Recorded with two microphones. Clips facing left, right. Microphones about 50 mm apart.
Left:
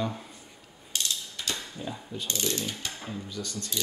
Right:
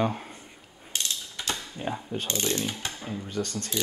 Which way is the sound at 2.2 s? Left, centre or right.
Right.